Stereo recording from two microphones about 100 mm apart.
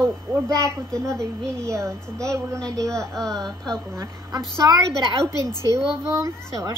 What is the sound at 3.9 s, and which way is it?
A woman's voice, 30° right (ahead or behind).